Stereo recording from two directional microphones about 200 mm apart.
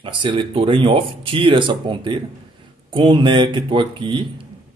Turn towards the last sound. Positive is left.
turn(degrees=-25)  # may be behind; listen again after turning